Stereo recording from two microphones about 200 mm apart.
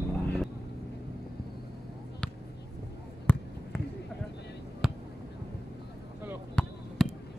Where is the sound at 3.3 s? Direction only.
10° left (ahead or behind).